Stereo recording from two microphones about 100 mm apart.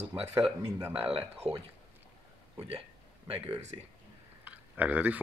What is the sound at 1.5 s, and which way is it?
Speech, 75° right (ahead or behind).